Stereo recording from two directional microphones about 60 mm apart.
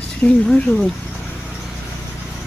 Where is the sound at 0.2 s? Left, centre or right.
Left.